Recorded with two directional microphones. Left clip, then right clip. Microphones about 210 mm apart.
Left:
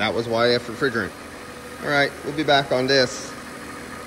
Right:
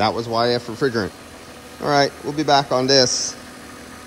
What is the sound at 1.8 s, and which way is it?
Speech, 15° right (ahead or behind).